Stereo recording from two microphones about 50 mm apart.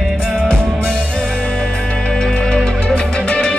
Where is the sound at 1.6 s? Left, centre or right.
Centre.